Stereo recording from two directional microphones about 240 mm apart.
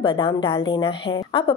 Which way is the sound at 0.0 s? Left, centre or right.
Left.